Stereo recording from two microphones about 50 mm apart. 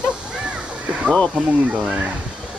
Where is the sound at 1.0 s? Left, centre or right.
Left.